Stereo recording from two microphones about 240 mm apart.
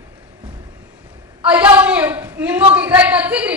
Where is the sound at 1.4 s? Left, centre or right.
Centre.